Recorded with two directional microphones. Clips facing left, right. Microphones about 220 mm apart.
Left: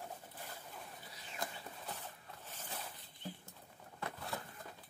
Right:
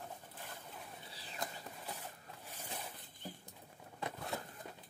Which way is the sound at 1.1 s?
30° right (ahead or behind).